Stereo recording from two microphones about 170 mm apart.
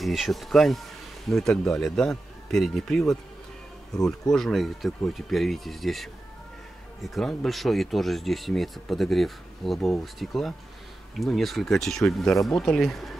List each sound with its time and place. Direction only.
0.0 s speech: centre (ahead or behind)